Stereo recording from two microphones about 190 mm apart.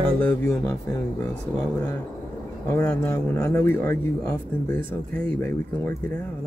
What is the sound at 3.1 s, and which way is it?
Speech, 15° left (ahead or behind).